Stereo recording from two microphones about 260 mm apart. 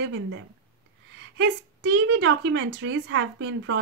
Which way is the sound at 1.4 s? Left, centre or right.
Right.